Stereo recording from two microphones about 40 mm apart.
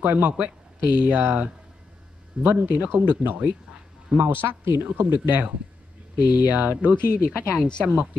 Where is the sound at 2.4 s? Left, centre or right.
Right.